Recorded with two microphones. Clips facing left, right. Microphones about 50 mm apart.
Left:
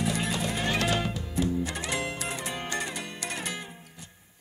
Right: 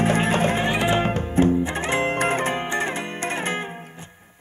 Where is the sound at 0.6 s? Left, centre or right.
Right.